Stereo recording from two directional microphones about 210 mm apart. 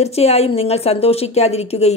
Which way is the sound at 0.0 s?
30° left (ahead or behind).